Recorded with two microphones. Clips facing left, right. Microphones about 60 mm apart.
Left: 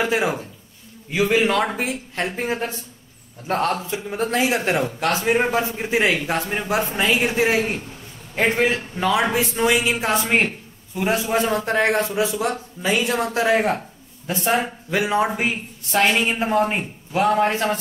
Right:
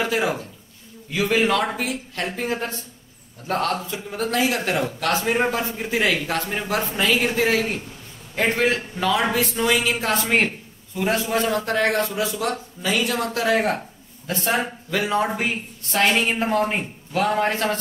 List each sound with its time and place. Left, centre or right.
0.0 s a man's voice: centre